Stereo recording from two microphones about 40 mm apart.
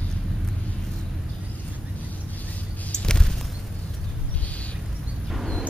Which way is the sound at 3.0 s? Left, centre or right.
Centre.